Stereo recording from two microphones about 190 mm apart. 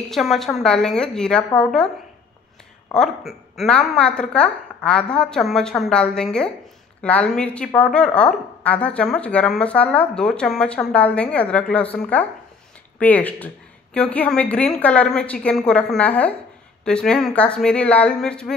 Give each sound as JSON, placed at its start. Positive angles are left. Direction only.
{"t": 0.1, "sound": "a woman's voice", "side_deg": 0}
{"t": 2.9, "sound": "a woman's voice", "side_deg": 0}